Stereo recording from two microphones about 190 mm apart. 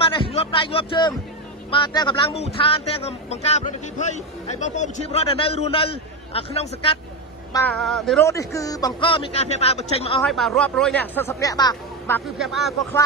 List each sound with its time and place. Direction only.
0.0 s music: 30° left (ahead or behind)
1.7 s a man's voice: 25° left (ahead or behind)
7.8 s speech: centre (ahead or behind)
8.2 s a man's voice: 15° left (ahead or behind); by 10.2 s 30° left (ahead or behind)
10.2 s speech: centre (ahead or behind); by 12.2 s 20° left (ahead or behind)
12.4 s speech: centre (ahead or behind)